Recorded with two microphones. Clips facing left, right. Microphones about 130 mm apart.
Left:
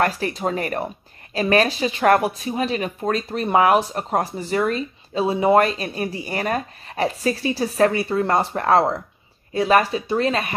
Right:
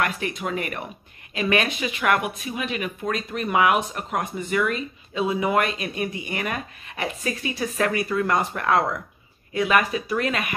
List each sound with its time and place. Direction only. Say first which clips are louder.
0.0 s speech: left 5 dB; 35° left (ahead or behind)